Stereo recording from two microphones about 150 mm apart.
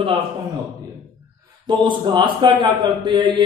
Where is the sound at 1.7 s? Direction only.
30° right (ahead or behind).